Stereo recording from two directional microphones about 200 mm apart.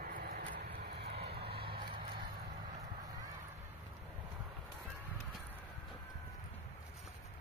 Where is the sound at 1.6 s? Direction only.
25° right (ahead or behind).